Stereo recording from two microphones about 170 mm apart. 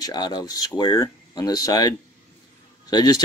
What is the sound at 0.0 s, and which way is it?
Speech, 25° left (ahead or behind).